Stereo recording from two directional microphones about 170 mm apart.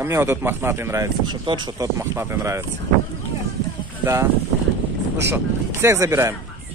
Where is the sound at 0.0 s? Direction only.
15° right (ahead or behind).